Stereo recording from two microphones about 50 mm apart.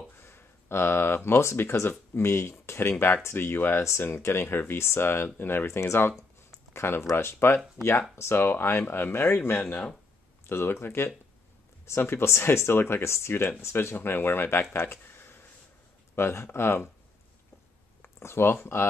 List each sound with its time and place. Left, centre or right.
0.2 s speech: left
1.6 s speech: left
5.7 s speech: left
6.7 s speech: left
10.4 s speech: left
13.6 s speech: left
13.9 s speech: left
16.2 s speech: left
18.0 s speech: left